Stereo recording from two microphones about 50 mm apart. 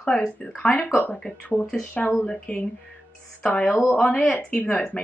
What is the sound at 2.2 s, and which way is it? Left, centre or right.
Speech, centre.